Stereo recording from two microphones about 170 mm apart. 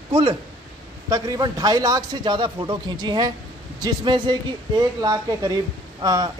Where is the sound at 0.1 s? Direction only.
30° right (ahead or behind).